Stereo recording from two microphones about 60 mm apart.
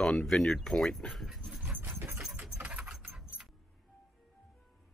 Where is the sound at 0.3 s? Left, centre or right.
Centre.